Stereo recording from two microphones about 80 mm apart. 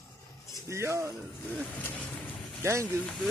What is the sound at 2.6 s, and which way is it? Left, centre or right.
Speech, right.